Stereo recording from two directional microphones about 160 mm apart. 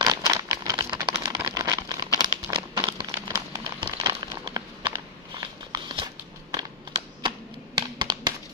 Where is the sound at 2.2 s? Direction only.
25° right (ahead or behind).